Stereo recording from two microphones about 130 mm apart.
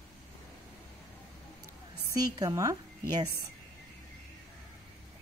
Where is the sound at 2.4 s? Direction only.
25° right (ahead or behind).